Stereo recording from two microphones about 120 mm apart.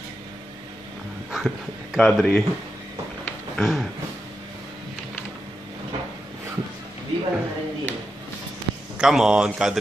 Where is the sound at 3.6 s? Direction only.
Centre (ahead or behind).